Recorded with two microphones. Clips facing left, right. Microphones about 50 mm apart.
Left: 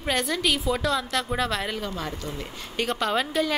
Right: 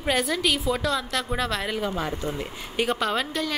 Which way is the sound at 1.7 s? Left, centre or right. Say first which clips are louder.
Right 4 dB; centre.